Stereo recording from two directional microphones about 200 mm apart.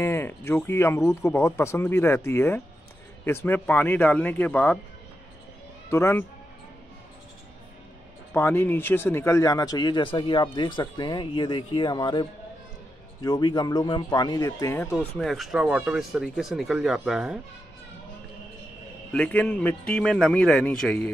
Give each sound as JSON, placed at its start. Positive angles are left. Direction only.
{"t": 0.0, "sound": "speech", "side_deg": 10}
{"t": 5.9, "sound": "a man's voice", "side_deg": 15}
{"t": 8.3, "sound": "speech", "side_deg": 10}
{"t": 15.0, "sound": "speech", "side_deg": 0}
{"t": 19.1, "sound": "speech", "side_deg": 5}